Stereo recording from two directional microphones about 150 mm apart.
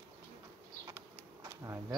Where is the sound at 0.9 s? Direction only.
15° right (ahead or behind).